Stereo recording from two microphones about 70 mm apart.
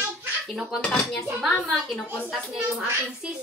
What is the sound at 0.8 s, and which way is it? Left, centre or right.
Dishes, centre.